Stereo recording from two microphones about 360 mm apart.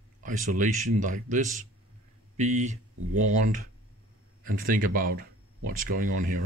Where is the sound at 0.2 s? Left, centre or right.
Right.